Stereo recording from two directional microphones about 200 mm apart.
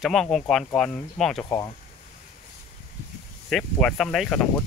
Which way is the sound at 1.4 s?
15° left (ahead or behind).